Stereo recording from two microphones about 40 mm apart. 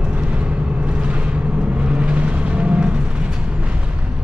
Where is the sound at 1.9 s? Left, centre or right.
Right.